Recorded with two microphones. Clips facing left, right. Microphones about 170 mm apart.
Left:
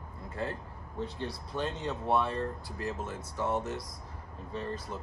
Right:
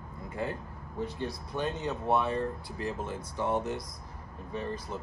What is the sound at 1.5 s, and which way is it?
Speech, 15° right (ahead or behind).